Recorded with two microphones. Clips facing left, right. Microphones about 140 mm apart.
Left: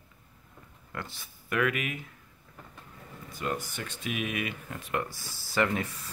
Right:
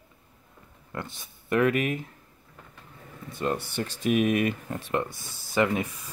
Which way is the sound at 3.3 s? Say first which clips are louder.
Right 5 dB; 30° right (ahead or behind).